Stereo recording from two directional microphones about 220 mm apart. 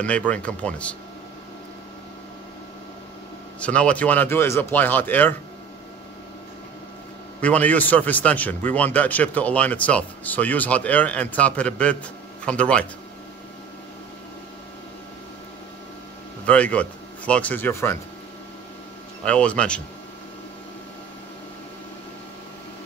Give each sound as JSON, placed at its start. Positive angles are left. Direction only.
{"t": 0.0, "sound": "speech", "side_deg": 5}
{"t": 3.5, "sound": "a man's voice", "side_deg": 5}
{"t": 7.4, "sound": "a man's voice", "side_deg": 5}
{"t": 16.4, "sound": "speech", "side_deg": 5}
{"t": 19.2, "sound": "speech", "side_deg": 5}